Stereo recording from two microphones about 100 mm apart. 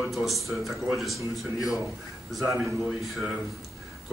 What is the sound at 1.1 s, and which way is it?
Speech, 35° left (ahead or behind).